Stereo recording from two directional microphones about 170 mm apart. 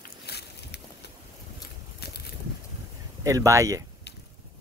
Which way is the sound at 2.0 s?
70° left (ahead or behind).